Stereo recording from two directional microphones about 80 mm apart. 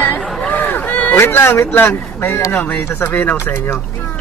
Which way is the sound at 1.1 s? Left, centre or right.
Left.